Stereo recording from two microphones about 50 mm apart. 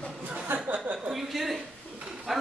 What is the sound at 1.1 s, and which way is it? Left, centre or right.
A woman's voice, centre.